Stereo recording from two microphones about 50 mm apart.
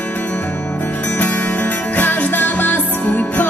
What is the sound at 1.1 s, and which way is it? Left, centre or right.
Music, left.